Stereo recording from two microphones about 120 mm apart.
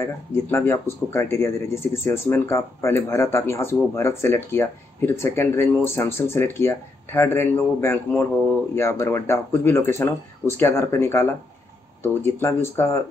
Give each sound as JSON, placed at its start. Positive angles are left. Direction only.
{"t": 0.0, "sound": "speech", "side_deg": 20}